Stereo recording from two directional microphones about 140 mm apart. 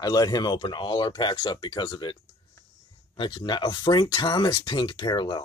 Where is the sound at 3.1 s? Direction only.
35° left (ahead or behind).